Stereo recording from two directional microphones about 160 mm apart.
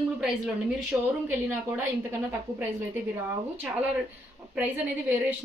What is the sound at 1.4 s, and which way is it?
A woman's voice, 15° right (ahead or behind).